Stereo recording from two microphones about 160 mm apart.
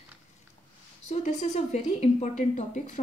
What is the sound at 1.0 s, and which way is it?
A woman's voice, 50° left (ahead or behind).